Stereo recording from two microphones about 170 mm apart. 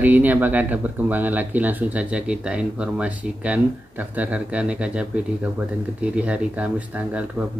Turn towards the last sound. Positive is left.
turn(degrees=-5)  # may be behind; listen again after turning